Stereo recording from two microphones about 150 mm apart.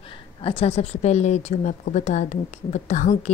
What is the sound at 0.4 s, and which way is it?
Speech, 40° left (ahead or behind).